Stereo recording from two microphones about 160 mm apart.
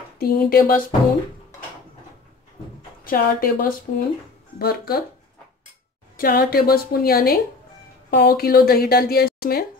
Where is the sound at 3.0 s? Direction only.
65° left (ahead or behind).